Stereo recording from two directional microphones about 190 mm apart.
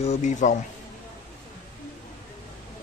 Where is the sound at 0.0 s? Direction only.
40° left (ahead or behind).